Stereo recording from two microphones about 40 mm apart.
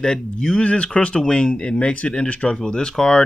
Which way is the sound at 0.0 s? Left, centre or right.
Centre.